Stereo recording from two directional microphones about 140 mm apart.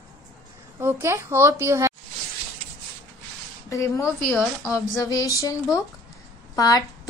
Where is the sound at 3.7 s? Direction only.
20° left (ahead or behind).